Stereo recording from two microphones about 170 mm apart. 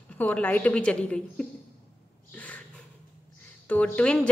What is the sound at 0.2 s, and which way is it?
Speech, 10° left (ahead or behind).